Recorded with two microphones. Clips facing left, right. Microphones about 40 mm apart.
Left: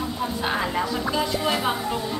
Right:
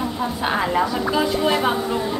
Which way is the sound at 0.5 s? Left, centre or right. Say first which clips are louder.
Right 6 dB; centre.